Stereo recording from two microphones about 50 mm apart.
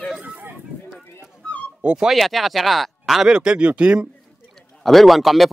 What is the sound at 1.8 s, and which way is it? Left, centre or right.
Speech, centre.